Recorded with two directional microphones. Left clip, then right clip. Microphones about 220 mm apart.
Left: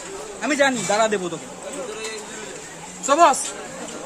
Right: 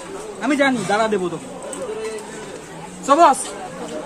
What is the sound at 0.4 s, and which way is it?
Speech, 25° left (ahead or behind).